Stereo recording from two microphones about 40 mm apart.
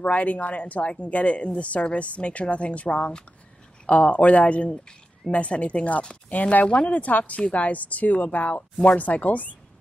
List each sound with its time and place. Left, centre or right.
0.0 s speech: left